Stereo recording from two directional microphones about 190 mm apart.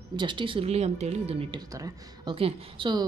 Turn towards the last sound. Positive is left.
turn(degrees=-25)  # may be behind; listen again after turning